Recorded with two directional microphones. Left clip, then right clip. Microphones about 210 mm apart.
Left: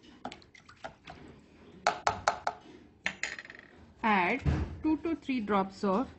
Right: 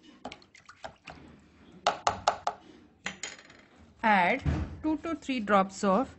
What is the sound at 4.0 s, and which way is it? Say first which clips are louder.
Speech: right 4 dB; 50° right (ahead or behind).